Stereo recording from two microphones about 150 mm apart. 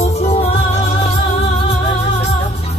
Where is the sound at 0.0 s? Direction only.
45° left (ahead or behind).